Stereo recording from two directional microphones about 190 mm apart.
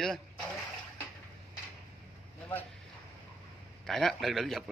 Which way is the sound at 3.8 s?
Centre (ahead or behind).